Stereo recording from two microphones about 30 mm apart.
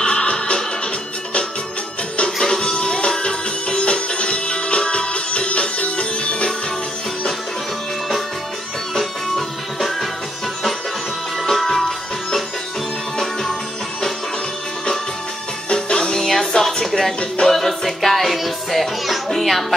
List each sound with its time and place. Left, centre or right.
0.0 s music: left
2.3 s music: centre
2.7 s music: left
8.9 s music: centre
11.4 s music: centre
13.2 s music: centre
15.7 s music: left
16.2 s music: centre